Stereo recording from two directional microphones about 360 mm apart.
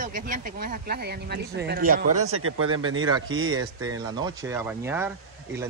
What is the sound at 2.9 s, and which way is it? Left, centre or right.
Speech, centre.